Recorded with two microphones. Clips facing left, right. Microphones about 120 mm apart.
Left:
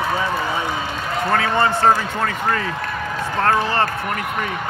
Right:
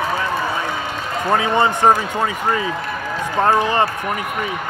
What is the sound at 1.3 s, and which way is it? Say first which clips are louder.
Speech: right 2 dB; 15° right (ahead or behind).